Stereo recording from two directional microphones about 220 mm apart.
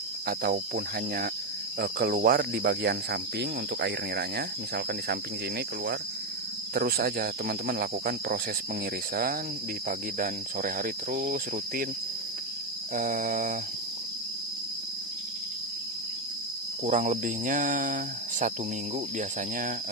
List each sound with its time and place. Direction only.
0.3 s cricket: 45° right (ahead or behind)
6.7 s cricket: 40° right (ahead or behind)
12.9 s cricket: 40° right (ahead or behind)
16.8 s cricket: 35° right (ahead or behind)